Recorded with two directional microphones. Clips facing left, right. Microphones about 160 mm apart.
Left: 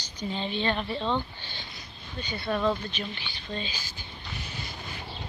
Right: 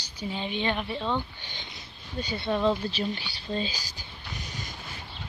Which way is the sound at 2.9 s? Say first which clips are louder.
Right 5 dB; 35° right (ahead or behind).